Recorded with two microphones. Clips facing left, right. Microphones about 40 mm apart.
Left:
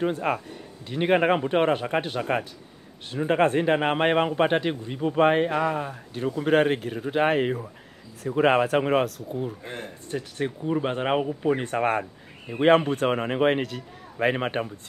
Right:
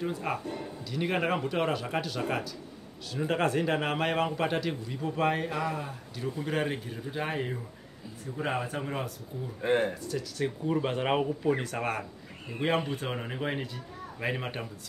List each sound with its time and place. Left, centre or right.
0.0 s a man's voice: left
8.2 s speech: left
9.6 s speech: right
10.0 s a man's voice: left
10.6 s a man's voice: centre
11.6 s a man's voice: left
14.2 s a man's voice: left